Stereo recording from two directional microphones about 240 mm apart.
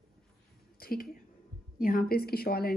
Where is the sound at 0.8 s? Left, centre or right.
Left.